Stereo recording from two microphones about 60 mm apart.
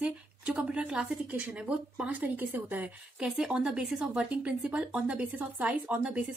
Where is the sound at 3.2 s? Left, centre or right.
Centre.